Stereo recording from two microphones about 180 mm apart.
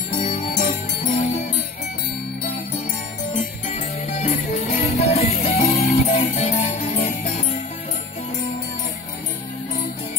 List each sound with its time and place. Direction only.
0.2 s jingle bell: 45° left (ahead or behind)
3.3 s music: 45° left (ahead or behind)